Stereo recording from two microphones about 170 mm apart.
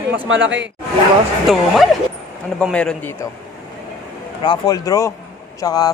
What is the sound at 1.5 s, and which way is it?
A man's voice, centre (ahead or behind).